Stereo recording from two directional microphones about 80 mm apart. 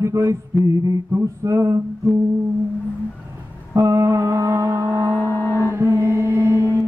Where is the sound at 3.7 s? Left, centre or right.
Right.